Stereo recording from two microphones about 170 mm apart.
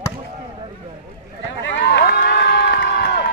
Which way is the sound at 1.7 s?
85° left.